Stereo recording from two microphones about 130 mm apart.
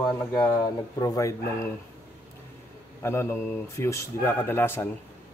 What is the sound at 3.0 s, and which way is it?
Speech, 20° left (ahead or behind).